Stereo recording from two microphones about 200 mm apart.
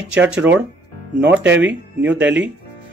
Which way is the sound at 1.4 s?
65° right (ahead or behind).